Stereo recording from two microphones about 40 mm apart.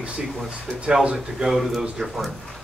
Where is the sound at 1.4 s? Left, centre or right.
Centre.